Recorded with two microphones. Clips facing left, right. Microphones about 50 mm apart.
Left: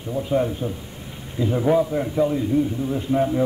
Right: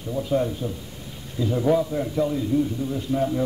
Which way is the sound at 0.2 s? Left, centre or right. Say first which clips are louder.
Left 2 dB; centre.